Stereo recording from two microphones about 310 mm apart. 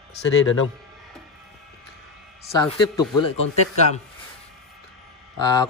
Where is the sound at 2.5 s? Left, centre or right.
Centre.